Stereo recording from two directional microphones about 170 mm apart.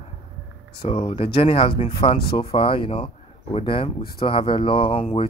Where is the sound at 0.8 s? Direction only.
40° left (ahead or behind).